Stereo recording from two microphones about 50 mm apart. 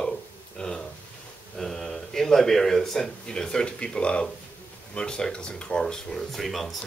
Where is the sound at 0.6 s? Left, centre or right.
Centre.